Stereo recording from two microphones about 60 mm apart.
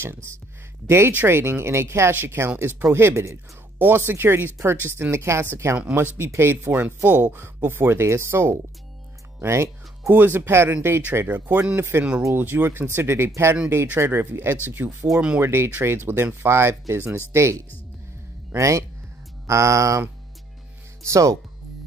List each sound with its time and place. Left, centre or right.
0.0 s speech: right
3.7 s speech: right
10.0 s speech: right
15.1 s speech: centre
15.4 s speech: right
18.6 s speech: right
21.0 s speech: right